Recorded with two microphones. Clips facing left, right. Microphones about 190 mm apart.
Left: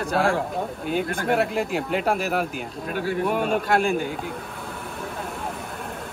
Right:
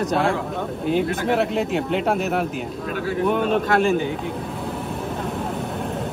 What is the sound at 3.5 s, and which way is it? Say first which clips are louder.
Speech: right 3 dB; centre (ahead or behind).